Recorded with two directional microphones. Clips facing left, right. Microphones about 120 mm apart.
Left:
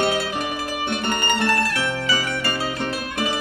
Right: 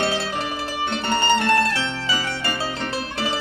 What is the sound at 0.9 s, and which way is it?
Mandolin, 30° right (ahead or behind).